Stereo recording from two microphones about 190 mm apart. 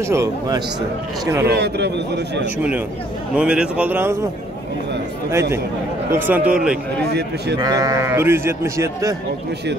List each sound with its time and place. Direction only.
0.1 s speech: 15° right (ahead or behind)
1.5 s a man's voice: 60° right (ahead or behind)
3.3 s speech: 5° right (ahead or behind)
6.0 s speech: 10° right (ahead or behind)
7.1 s a man's voice: 60° right (ahead or behind)
7.5 s speech: 20° right (ahead or behind)